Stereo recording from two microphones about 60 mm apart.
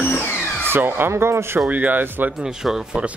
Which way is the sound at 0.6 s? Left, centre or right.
Right.